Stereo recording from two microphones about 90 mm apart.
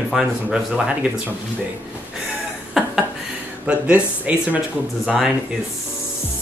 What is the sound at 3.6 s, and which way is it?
Speech, 15° right (ahead or behind).